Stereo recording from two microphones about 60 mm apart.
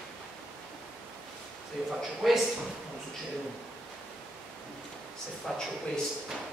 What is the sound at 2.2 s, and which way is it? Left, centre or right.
Speech, centre.